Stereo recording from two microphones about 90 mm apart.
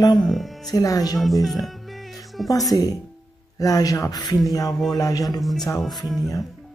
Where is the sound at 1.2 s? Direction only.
Centre (ahead or behind).